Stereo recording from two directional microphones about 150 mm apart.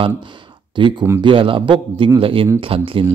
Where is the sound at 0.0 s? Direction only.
35° right (ahead or behind).